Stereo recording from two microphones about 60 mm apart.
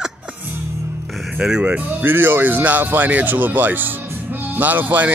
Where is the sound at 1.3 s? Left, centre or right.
Centre.